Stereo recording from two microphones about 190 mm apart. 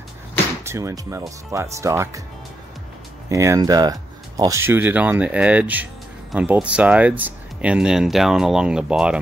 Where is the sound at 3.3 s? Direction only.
15° right (ahead or behind).